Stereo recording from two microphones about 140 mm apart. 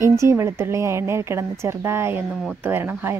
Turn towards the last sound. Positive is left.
turn(degrees=-15)  # may be behind; listen again after turning